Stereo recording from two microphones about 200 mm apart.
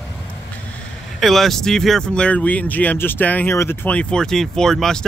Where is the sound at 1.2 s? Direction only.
Centre (ahead or behind).